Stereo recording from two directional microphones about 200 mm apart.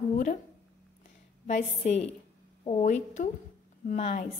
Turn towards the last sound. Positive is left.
turn(degrees=35)  # may be behind; listen again after turning